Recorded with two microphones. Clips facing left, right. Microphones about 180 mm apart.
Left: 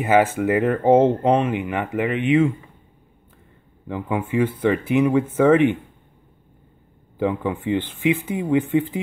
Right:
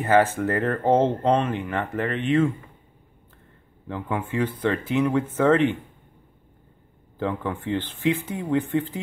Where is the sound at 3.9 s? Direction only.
10° left (ahead or behind).